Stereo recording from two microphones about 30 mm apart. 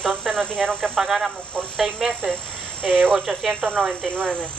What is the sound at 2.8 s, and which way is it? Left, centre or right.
Speech, left.